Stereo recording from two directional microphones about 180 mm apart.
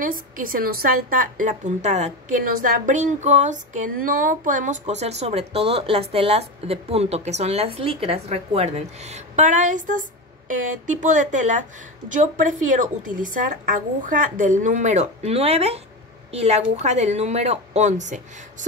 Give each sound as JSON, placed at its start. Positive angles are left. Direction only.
{"t": 0.0, "sound": "a woman's voice", "side_deg": -50}